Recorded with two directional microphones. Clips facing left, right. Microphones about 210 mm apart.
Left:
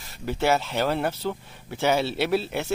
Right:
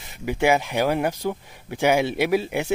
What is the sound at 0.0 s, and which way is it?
Speech, 15° right (ahead or behind).